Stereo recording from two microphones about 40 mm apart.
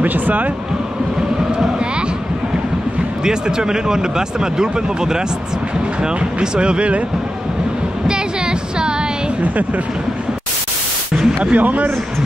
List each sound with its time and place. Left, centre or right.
0.0 s speech: right
3.3 s speech: centre
6.4 s speech: right
8.1 s a sound: right
11.1 s a sound: right
11.5 s a man's voice: right